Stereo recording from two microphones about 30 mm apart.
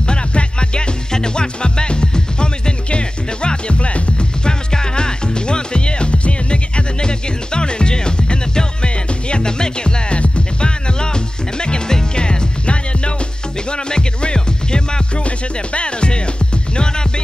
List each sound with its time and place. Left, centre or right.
0.0 s music: left
4.5 s music: left
11.0 s music: left
15.2 s music: left